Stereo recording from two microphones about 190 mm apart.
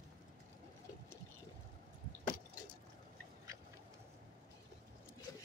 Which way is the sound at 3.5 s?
15° right (ahead or behind).